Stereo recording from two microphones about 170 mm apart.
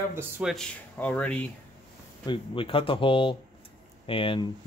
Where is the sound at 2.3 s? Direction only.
30° left (ahead or behind).